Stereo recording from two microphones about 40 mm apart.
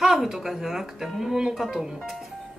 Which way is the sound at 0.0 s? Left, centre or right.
Centre.